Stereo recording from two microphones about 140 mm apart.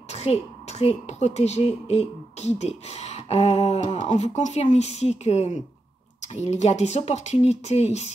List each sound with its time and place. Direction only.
0.1 s a woman's voice: 50° left (ahead or behind)